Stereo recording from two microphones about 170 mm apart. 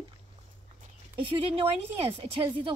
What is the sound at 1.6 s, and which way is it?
Speech, 35° right (ahead or behind).